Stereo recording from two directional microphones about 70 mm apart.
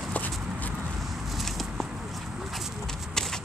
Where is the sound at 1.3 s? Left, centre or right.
Centre.